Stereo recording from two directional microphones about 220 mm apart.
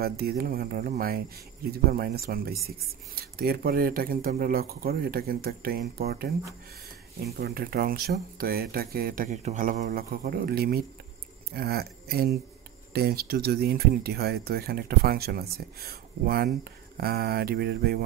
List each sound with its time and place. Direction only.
0.0 s speech: 45° right (ahead or behind)
7.3 s speech: 45° right (ahead or behind)